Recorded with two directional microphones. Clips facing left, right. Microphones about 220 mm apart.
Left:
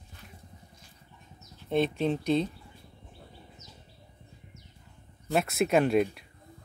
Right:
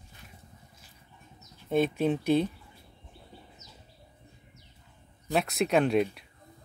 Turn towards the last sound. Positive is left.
turn(degrees=0)  # may be behind; listen again after turning